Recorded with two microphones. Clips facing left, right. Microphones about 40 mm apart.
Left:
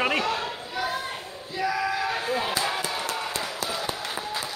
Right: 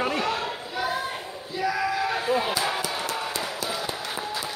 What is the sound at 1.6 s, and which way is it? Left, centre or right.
Chop, centre.